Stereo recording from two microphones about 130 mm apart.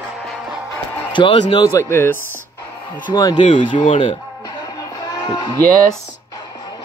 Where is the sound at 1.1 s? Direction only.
40° left (ahead or behind).